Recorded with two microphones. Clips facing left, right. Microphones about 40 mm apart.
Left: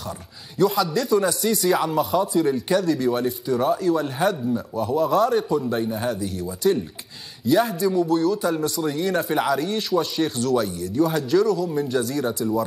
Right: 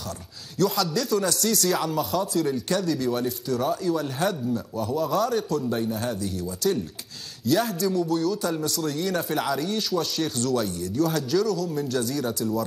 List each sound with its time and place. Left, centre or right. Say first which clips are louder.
0.6 s speech: left 4 dB; centre